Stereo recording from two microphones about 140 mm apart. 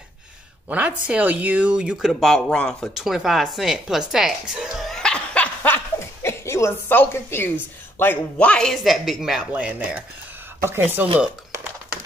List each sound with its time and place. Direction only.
0.7 s speech: 10° right (ahead or behind)
4.1 s a sound: 5° right (ahead or behind)
6.2 s a woman's voice: 20° left (ahead or behind); by 11.1 s 15° right (ahead or behind)